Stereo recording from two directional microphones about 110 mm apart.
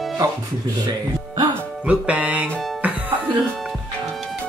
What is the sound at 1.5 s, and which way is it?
Speech, 10° right (ahead or behind).